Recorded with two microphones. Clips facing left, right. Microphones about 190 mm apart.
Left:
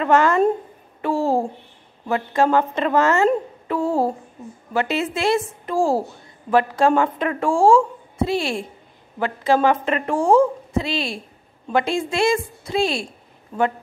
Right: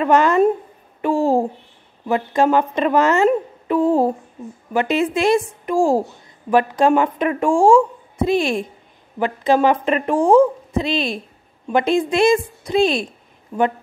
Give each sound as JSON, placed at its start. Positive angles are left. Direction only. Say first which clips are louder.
{"t": 0.0, "sound": "a woman's voice", "louder": "right 2 dB", "side_deg": -15}
{"t": 3.6, "sound": "a sound", "louder": "right 5 dB", "side_deg": -20}
{"t": 4.7, "sound": "a woman's voice", "louder": "right 4 dB", "side_deg": -15}